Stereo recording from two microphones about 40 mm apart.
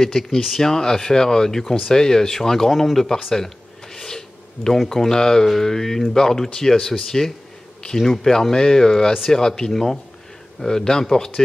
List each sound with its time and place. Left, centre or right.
0.0 s speech: centre
2.7 s a sound: centre
4.8 s speech: centre